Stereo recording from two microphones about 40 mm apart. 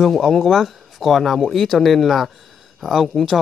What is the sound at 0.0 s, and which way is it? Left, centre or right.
Speech, centre.